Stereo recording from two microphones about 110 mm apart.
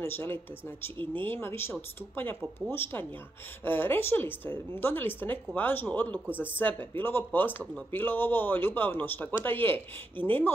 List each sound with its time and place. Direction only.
0.0 s a woman's voice: 20° left (ahead or behind)